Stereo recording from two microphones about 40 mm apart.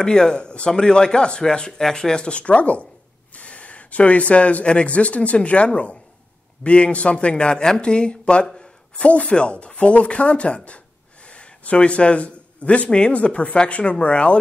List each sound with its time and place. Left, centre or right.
0.0 s speech: left